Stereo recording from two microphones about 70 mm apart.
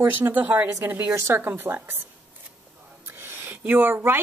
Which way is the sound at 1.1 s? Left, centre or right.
Right.